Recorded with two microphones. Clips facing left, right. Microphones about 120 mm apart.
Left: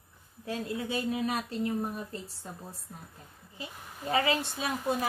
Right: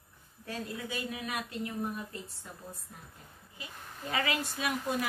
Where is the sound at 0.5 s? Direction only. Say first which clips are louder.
Left 5 dB; 30° left (ahead or behind).